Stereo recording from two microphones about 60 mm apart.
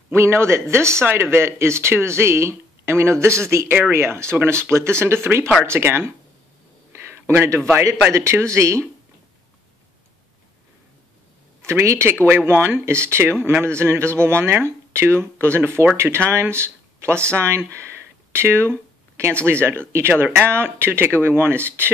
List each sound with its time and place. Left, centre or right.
0.1 s speech: right
6.9 s a sound: right
8.1 s speech: right
11.8 s speech: right
12.3 s speech: right
18.3 s a sound: right
19.4 s speech: right